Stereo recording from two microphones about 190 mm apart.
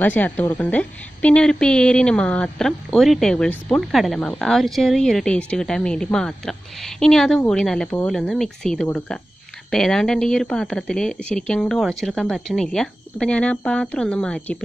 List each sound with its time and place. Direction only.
0.0 s speech: 10° left (ahead or behind)